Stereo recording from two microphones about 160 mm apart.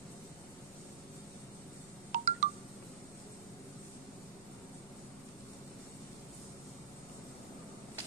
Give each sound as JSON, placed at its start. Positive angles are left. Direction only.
{"t": 2.1, "sound": "telephone dialing", "side_deg": -50}